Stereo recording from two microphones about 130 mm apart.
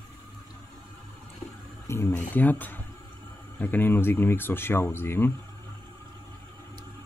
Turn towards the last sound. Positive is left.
turn(degrees=15)  # may be behind; listen again after turning